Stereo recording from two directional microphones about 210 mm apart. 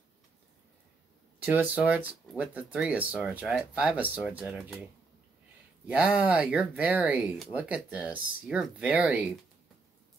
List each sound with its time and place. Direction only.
1.4 s speech: 10° right (ahead or behind)
5.9 s speech: 5° right (ahead or behind)